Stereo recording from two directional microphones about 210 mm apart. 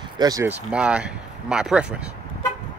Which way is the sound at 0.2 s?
15° right (ahead or behind).